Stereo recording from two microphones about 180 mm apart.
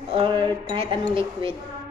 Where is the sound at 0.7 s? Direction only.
30° right (ahead or behind).